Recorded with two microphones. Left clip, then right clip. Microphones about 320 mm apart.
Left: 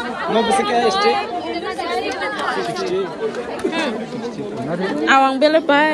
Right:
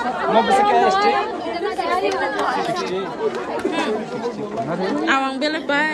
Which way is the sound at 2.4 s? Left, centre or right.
Centre.